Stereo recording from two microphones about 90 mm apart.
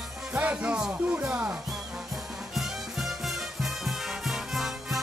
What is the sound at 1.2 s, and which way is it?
Music, 15° right (ahead or behind).